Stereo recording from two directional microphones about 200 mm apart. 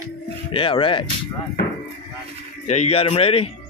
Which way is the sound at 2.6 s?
35° left (ahead or behind).